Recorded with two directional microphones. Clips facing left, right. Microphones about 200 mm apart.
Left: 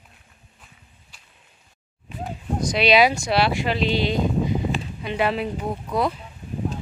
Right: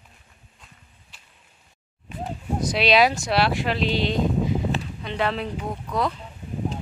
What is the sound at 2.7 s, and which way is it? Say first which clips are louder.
Speech: left 2 dB; centre (ahead or behind).